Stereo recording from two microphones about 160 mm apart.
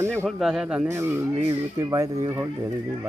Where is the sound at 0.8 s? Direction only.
15° right (ahead or behind).